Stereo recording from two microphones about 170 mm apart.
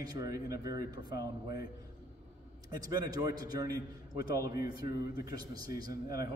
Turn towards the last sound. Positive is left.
turn(degrees=-20)  # may be behind; listen again after turning